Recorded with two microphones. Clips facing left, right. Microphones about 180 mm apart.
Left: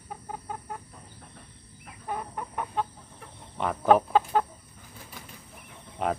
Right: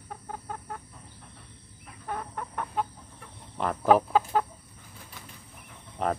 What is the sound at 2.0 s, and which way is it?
Chicken, 15° left (ahead or behind).